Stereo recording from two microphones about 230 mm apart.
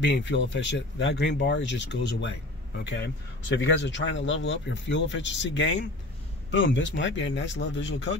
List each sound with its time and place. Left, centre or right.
0.0 s speech: left